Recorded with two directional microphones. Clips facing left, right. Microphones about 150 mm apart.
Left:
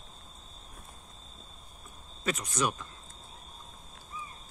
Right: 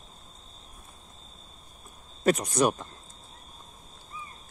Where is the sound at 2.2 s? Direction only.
40° right (ahead or behind).